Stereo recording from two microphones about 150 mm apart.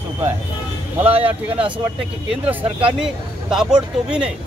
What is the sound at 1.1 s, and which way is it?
Speech, 40° right (ahead or behind).